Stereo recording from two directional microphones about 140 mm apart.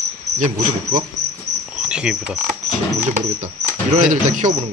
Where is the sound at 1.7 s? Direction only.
5° right (ahead or behind).